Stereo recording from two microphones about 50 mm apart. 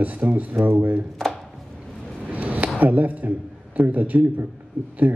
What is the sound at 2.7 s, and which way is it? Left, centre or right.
A man's voice, right.